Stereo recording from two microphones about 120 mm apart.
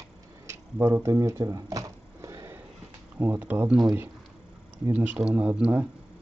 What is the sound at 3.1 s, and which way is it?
Speech, 15° right (ahead or behind).